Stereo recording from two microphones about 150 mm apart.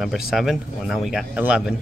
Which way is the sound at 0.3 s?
Centre (ahead or behind).